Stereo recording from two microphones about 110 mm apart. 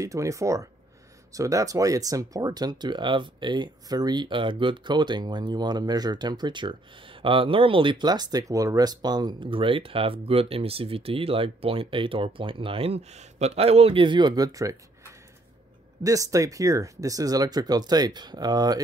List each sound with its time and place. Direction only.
0.0 s speech: 30° right (ahead or behind)
16.0 s speech: 30° right (ahead or behind)